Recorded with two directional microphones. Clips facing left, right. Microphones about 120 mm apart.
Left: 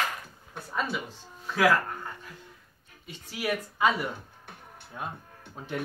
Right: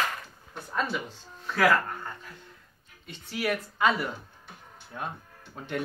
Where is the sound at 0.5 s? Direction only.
5° left (ahead or behind).